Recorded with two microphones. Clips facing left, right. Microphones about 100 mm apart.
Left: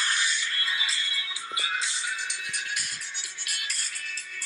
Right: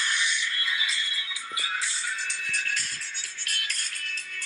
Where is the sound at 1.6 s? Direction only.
20° left (ahead or behind).